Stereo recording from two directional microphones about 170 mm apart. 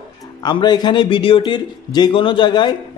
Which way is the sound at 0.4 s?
25° left (ahead or behind).